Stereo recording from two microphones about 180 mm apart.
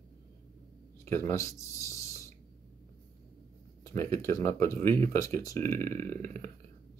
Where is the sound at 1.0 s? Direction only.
15° left (ahead or behind).